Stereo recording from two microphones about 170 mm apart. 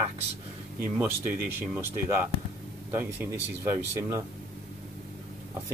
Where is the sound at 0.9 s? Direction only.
10° right (ahead or behind).